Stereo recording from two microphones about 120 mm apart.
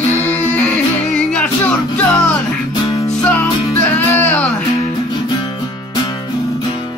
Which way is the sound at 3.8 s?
15° left (ahead or behind).